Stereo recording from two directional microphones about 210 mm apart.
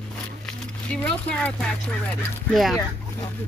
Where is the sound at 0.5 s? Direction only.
5° left (ahead or behind).